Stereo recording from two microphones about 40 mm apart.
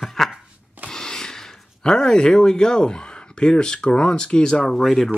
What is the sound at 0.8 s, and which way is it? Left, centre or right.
Speech, centre.